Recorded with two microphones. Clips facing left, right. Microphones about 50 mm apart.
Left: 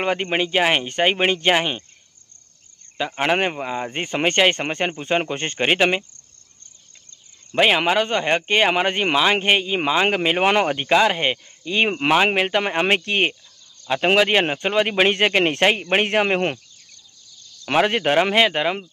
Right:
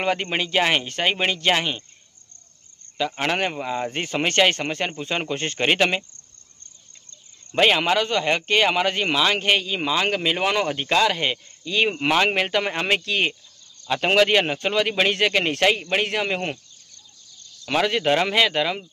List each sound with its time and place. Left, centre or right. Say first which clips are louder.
0.0 s speech: left 2 dB; centre
3.0 s speech: left 3 dB; centre
7.5 s speech: left 1 dB; centre
12.8 s a man's voice: left 3 dB; left
13.8 s a man's voice: left 1 dB; centre; by 16.5 s left
17.6 s speech: left 2 dB; left